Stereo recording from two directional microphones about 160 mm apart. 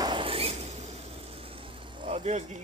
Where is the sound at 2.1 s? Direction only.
45° right (ahead or behind).